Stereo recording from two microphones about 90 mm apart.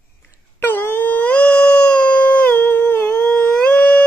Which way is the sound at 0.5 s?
25° left (ahead or behind).